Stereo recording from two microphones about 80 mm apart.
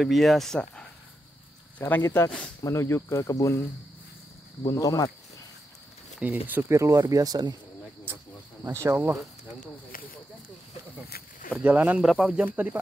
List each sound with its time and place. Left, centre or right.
0.0 s speech: centre
1.8 s speech: left
4.6 s speech: left
6.1 s speech: centre
6.7 s speech: right
8.6 s speech: right
11.6 s speech: centre
12.0 s speech: centre
12.3 s speech: centre